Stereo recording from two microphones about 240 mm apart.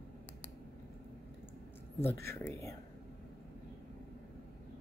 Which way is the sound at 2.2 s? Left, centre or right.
Centre.